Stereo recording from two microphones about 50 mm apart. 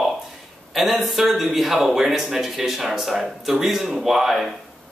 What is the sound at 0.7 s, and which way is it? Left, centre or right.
Speech, centre.